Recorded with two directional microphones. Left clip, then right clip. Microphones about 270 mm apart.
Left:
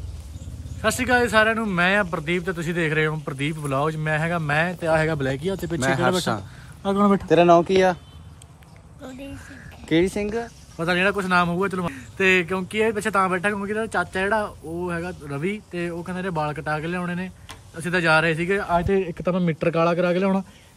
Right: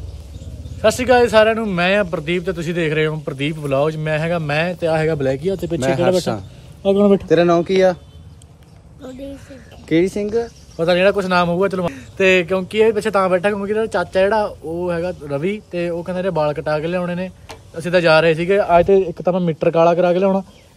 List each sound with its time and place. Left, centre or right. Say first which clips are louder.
0.7 s speech: right 7 dB; centre
6.8 s speech: right 7 dB; left
7.2 s speech: right 1 dB; centre
9.0 s speech: right 5 dB; centre